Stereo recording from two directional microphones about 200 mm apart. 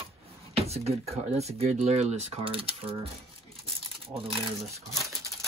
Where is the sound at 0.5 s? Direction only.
30° right (ahead or behind).